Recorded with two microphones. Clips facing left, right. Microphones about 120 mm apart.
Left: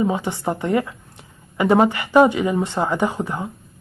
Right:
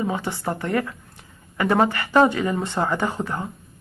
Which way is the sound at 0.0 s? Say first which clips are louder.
Left 4 dB; 20° left (ahead or behind).